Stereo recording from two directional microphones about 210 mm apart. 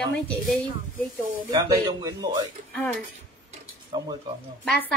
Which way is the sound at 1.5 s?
20° right (ahead or behind).